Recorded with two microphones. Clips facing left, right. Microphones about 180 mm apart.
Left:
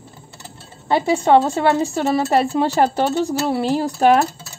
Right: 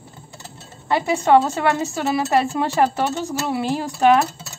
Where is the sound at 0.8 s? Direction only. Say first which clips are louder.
Left 3 dB; 30° left (ahead or behind).